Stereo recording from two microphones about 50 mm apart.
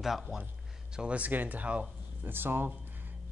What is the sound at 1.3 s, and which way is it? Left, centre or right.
Speech, right.